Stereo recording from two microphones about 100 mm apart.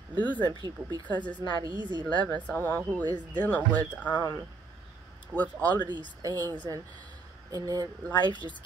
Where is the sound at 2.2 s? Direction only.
15° left (ahead or behind).